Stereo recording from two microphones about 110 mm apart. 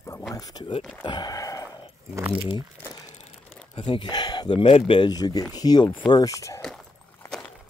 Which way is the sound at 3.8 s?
50° left (ahead or behind).